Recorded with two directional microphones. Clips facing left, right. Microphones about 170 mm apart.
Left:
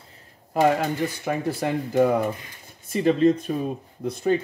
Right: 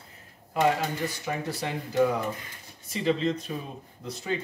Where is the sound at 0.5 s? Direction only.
50° left (ahead or behind).